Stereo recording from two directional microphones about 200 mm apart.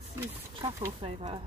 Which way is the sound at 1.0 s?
30° right (ahead or behind).